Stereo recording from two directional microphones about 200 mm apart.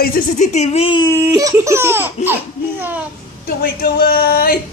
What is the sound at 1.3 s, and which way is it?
Laughter, 15° right (ahead or behind).